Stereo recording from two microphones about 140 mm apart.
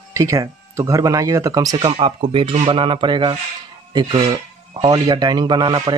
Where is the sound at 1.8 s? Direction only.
40° right (ahead or behind).